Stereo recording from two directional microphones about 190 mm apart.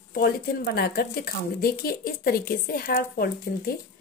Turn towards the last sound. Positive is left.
turn(degrees=50)  # may be behind; listen again after turning